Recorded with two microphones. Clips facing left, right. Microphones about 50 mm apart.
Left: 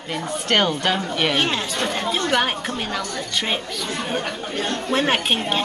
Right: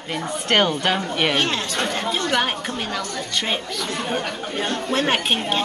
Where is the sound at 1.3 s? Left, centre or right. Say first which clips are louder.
Even; centre.